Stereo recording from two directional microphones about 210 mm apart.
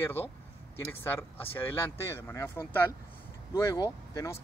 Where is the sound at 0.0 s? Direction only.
10° left (ahead or behind).